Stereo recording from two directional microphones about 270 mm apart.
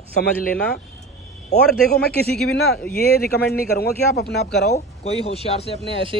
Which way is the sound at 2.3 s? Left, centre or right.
Centre.